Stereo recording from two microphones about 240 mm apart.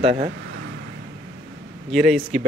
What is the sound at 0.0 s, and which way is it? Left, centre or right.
Speech, right.